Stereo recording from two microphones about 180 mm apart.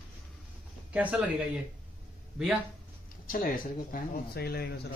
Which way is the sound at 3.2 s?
50° left (ahead or behind).